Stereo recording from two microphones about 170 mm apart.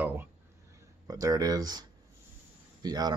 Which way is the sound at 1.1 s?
20° right (ahead or behind).